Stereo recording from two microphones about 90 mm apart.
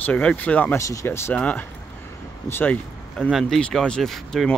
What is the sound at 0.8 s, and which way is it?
Speech, 30° left (ahead or behind).